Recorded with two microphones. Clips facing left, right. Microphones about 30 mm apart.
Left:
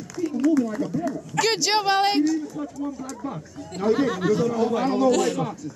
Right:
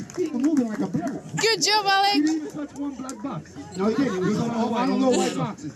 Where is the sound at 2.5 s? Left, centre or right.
Centre.